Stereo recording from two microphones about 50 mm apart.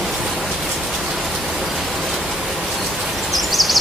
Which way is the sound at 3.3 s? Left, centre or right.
Centre.